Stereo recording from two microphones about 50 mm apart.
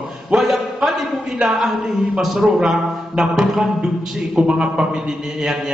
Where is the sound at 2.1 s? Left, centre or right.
Centre.